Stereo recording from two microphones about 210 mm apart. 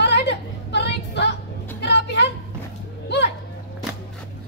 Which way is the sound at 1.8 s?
55° left (ahead or behind).